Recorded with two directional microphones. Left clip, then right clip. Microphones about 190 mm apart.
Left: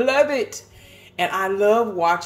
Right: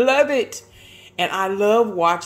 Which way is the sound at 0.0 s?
35° right (ahead or behind).